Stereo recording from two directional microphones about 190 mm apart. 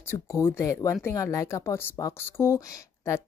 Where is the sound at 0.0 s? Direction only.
15° left (ahead or behind).